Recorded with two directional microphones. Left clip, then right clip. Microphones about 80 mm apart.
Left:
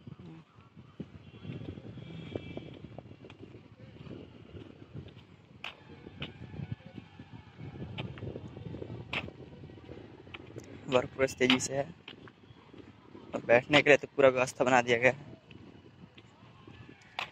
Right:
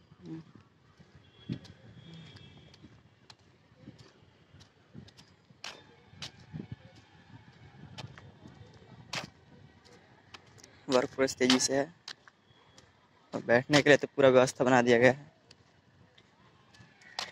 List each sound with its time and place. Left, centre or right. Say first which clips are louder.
1.4 s vehicle: even; right
5.6 s vehicle: left 1 dB; right
8.5 s a sound: left 12 dB; right
9.8 s vehicle: left 6 dB; right
10.7 s speech: right 1 dB; right
13.3 s speech: left 1 dB; right
14.4 s speech: right 1 dB; right
15.0 s a man's voice: right 3 dB; right